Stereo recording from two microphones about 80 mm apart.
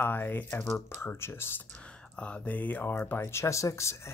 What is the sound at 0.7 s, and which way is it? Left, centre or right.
Speech, left.